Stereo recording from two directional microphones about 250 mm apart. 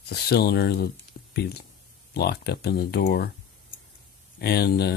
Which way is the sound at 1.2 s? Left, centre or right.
Left.